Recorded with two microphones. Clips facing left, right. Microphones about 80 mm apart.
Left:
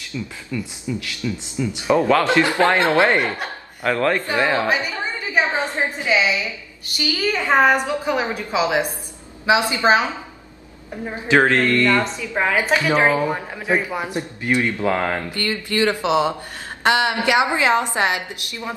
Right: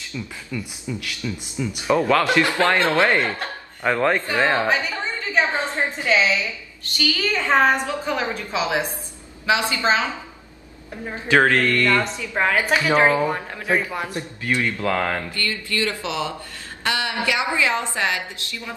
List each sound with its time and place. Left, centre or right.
0.5 s speech: centre
0.9 s speech: left
3.8 s speech: centre
4.6 s a woman's voice: centre
11.1 s a woman's voice: centre
12.4 s speech: centre
13.6 s speech: centre